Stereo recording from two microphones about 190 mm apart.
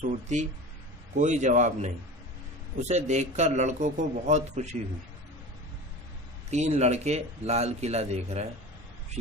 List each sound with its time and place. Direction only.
0.0 s speech: 40° right (ahead or behind)
2.9 s speech: 40° right (ahead or behind)
6.5 s speech: 35° right (ahead or behind)